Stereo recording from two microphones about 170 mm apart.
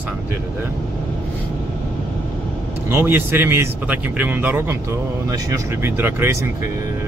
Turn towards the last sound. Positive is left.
turn(degrees=-15)  # may be behind; listen again after turning